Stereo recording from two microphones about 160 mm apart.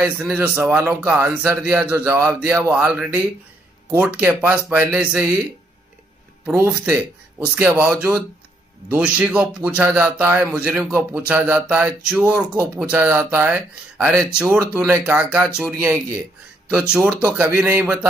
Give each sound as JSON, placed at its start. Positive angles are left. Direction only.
{"t": 0.0, "sound": "speech", "side_deg": -15}
{"t": 6.4, "sound": "speech", "side_deg": -15}